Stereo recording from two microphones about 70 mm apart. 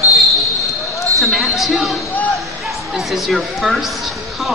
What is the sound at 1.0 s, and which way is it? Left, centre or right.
Basketball bounce, right.